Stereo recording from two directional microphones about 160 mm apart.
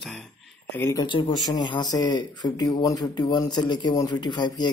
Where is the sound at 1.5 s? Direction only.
25° left (ahead or behind).